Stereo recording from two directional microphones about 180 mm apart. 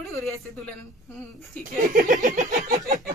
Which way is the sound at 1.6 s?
45° right (ahead or behind).